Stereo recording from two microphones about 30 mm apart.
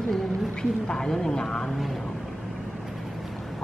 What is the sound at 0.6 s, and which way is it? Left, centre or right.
Speech, left.